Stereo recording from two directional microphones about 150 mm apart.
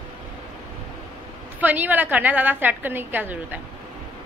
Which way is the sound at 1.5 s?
10° right (ahead or behind).